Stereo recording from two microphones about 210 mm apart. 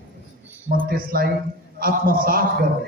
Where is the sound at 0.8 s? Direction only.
45° right (ahead or behind).